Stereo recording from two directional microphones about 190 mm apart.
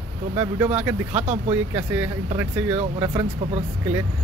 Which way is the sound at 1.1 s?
35° right (ahead or behind).